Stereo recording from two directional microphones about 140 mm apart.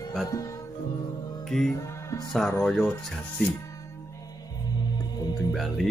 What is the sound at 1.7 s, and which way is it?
Music, 25° left (ahead or behind).